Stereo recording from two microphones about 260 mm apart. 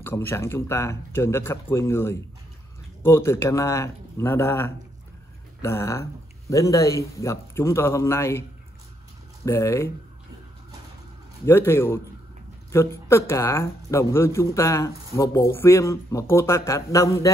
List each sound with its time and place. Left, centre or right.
0.0 s speech: centre
11.4 s speech: centre